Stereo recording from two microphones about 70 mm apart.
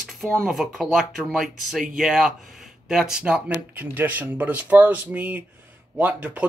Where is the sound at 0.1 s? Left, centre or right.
Centre.